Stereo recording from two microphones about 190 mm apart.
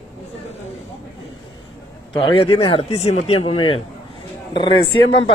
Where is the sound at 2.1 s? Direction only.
30° left (ahead or behind).